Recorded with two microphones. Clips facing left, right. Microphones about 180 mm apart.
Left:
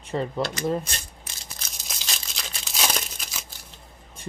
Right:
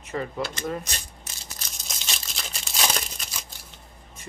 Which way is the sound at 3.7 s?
30° left (ahead or behind).